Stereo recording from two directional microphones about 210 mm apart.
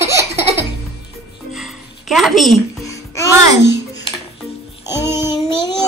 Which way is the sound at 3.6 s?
55° left (ahead or behind).